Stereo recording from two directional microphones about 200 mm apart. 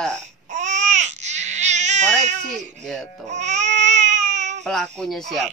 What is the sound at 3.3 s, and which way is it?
Baby cry, 35° right (ahead or behind).